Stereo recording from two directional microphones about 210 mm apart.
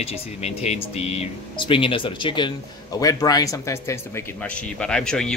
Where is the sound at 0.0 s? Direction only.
30° left (ahead or behind).